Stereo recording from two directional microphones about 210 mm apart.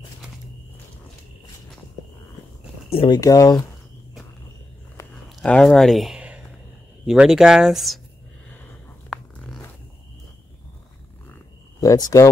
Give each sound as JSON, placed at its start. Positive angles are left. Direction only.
{"t": 2.9, "sound": "speech", "side_deg": 25}
{"t": 5.3, "sound": "speech", "side_deg": 5}
{"t": 9.1, "sound": "zipper", "side_deg": 0}
{"t": 11.8, "sound": "speech", "side_deg": 15}